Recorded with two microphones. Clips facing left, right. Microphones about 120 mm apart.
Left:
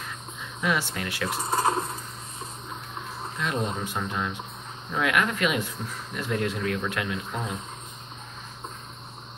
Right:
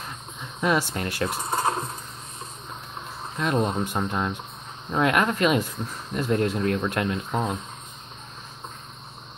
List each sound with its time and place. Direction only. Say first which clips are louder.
0.6 s speech: right 4 dB; 40° right (ahead or behind)
1.3 s speech: left 4 dB; centre (ahead or behind)
3.3 s speech: right 5 dB; 50° right (ahead or behind)
4.9 s speech: right 3 dB; 35° right (ahead or behind)